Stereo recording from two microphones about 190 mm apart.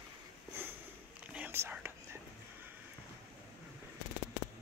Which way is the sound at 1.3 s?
10° right (ahead or behind).